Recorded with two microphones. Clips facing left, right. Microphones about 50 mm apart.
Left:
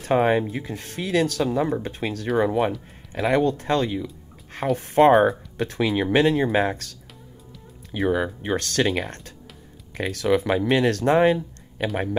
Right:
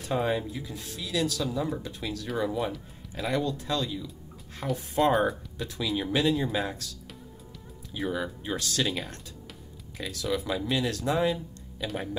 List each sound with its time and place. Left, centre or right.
0.0 s speech: left